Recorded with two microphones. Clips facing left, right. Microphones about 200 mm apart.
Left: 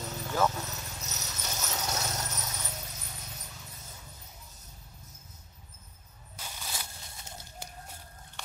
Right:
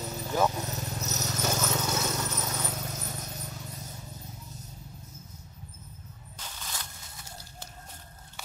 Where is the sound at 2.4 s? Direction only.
60° right (ahead or behind).